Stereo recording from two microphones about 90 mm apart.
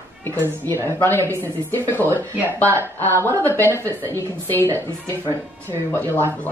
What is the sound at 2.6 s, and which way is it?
Speech, 30° right (ahead or behind).